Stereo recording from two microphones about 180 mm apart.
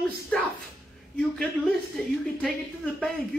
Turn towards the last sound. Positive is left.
turn(degrees=5)  # may be behind; listen again after turning